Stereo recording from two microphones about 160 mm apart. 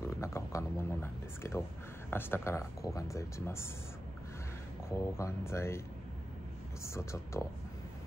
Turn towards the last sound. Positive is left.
turn(degrees=15)  # may be behind; listen again after turning